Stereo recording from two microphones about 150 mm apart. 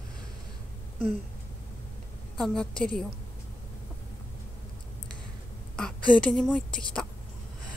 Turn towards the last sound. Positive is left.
turn(degrees=5)  # may be behind; listen again after turning